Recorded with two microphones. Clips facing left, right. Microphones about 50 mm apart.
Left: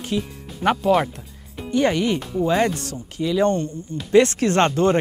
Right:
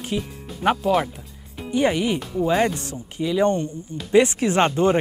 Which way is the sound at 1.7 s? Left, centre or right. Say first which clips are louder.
Left 1 dB; centre.